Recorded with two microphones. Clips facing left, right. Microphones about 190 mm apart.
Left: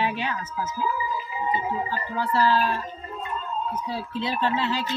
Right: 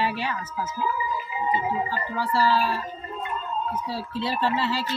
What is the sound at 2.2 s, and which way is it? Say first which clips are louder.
Speech: left 1 dB; 10° right (ahead or behind).